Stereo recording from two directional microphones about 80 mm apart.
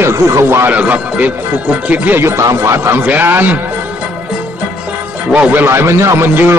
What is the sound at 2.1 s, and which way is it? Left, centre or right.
A man's voice, right.